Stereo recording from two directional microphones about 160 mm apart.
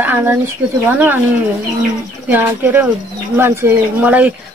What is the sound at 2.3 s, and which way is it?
Speech, 10° right (ahead or behind).